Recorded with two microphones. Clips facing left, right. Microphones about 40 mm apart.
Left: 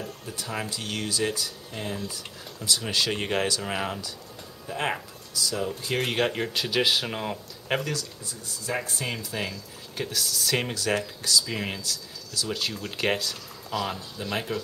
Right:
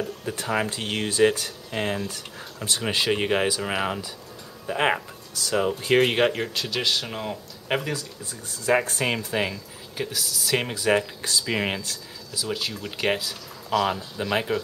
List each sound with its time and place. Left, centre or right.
0.2 s speech: right
1.8 s speech: right
2.6 s speech: right
5.3 s speech: right
6.3 s speech: centre
7.6 s speech: centre
8.6 s speech: right
9.9 s speech: centre
11.2 s speech: right
12.4 s speech: centre